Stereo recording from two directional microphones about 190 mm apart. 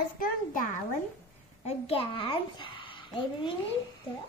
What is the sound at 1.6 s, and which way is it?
A child's voice, 35° left (ahead or behind).